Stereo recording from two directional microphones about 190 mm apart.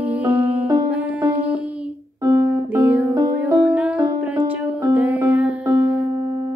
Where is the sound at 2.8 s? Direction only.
10° right (ahead or behind).